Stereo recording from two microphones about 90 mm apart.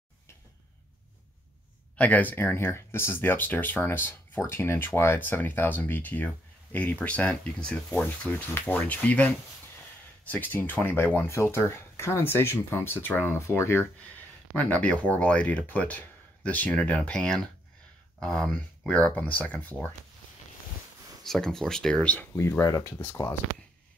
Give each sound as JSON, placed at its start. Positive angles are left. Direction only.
{"t": 2.0, "sound": "speech", "side_deg": 15}
{"t": 14.6, "sound": "speech", "side_deg": 15}
{"t": 21.2, "sound": "speech", "side_deg": 5}
{"t": 22.1, "sound": "speech", "side_deg": 20}